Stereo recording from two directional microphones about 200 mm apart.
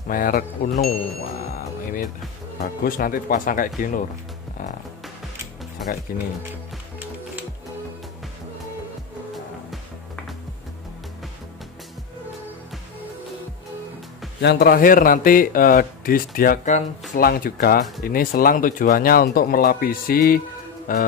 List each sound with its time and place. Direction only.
0.1 s a man's voice: 45° left (ahead or behind)
1.5 s music: 45° left (ahead or behind)
2.6 s a man's voice: 45° left (ahead or behind)
6.1 s a man's voice: 45° left (ahead or behind)
14.4 s a man's voice: 55° left (ahead or behind)